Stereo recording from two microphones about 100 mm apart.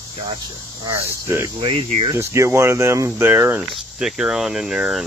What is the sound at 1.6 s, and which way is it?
Speech, 85° right.